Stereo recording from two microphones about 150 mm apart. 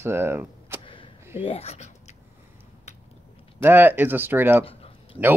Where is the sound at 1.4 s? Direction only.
40° left (ahead or behind).